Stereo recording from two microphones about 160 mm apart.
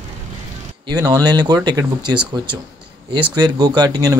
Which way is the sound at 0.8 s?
20° right (ahead or behind).